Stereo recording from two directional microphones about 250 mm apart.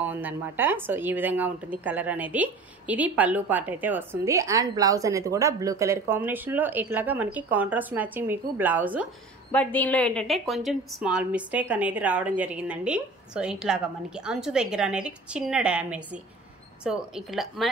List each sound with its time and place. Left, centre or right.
0.0 s speech: centre
9.5 s a woman's voice: centre